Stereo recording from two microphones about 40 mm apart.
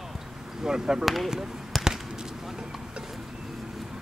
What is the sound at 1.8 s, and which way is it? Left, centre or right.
Basketball bounce, centre.